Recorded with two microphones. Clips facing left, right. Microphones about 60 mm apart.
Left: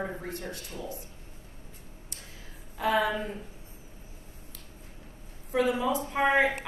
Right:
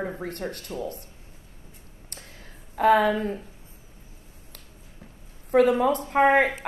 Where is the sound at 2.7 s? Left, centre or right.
Right.